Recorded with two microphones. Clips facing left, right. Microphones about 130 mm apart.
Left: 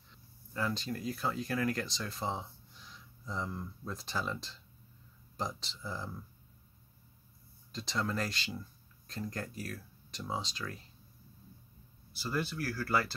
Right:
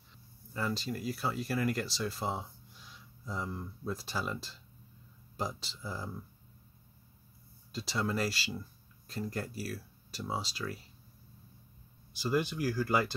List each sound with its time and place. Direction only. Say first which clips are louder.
0.5 s speech: even; 5° right (ahead or behind)
7.7 s speech: right 2 dB; 5° right (ahead or behind)
12.1 s speech: right 4 dB; 15° right (ahead or behind)